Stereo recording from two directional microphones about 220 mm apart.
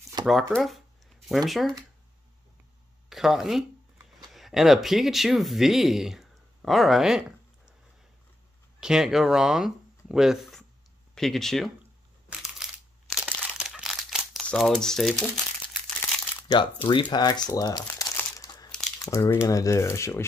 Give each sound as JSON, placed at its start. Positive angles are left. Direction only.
{"t": 0.2, "sound": "speech", "side_deg": 0}
{"t": 3.1, "sound": "speech", "side_deg": 0}
{"t": 8.7, "sound": "speech", "side_deg": 0}
{"t": 12.6, "sound": "crunch", "side_deg": 0}
{"t": 13.1, "sound": "crumpling", "side_deg": 0}
{"t": 16.4, "sound": "speech", "side_deg": 20}
{"t": 17.1, "sound": "crumpling", "side_deg": 20}
{"t": 18.7, "sound": "crumpling", "side_deg": 5}
{"t": 18.9, "sound": "speech", "side_deg": 15}